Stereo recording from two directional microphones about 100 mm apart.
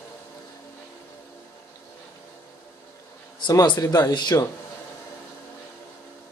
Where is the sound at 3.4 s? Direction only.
45° left (ahead or behind).